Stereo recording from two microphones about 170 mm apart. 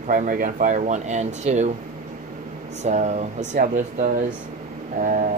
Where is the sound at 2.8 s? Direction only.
45° right (ahead or behind).